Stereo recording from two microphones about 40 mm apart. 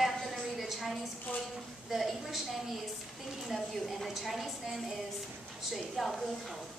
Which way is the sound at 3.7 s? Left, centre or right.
Centre.